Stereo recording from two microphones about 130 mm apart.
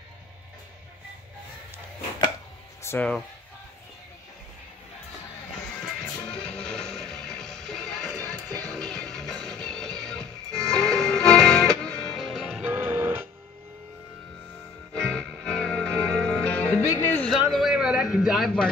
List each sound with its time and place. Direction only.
2.8 s music: 20° left (ahead or behind)
5.8 s music: 5° left (ahead or behind)
12.6 s music: 15° right (ahead or behind)
15.0 s music: 5° left (ahead or behind)
17.3 s a sound: centre (ahead or behind)